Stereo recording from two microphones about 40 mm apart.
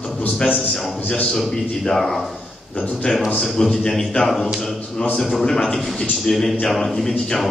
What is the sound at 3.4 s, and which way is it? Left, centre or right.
Speech, centre.